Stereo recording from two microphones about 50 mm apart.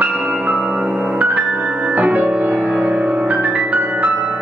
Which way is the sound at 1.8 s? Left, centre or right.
Right.